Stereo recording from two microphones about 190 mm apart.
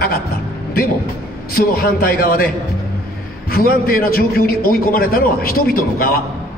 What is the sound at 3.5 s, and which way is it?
A man's voice, 50° left (ahead or behind).